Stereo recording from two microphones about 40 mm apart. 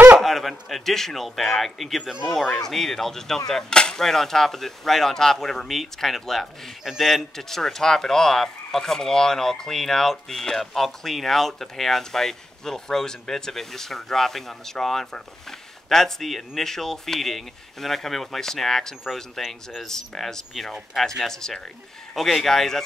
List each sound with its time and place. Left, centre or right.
0.2 s a man's voice: centre
3.7 s speech: left
4.0 s speech: centre
6.8 s a man's voice: centre
7.1 s a man's voice: centre
20.9 s a man's voice: centre
21.3 s speech: centre